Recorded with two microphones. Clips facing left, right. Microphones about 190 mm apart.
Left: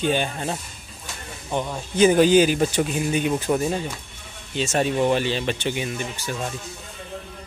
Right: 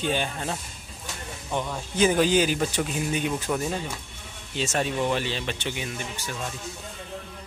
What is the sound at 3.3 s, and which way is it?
Speech, 30° left (ahead or behind).